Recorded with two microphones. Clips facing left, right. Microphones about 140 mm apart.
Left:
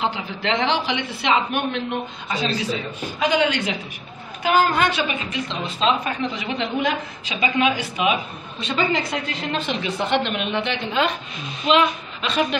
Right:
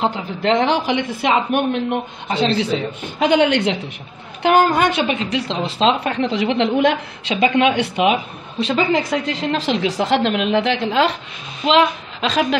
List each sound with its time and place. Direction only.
0.0 s a man's voice: 45° right (ahead or behind)
4.9 s a woman's voice: 75° right (ahead or behind)
12.2 s a woman's voice: 90° right